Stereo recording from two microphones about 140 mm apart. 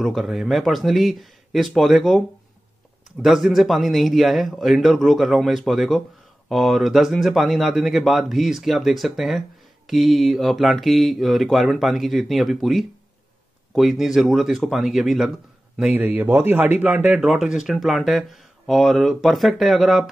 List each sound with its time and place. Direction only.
0.0 s speech: centre (ahead or behind)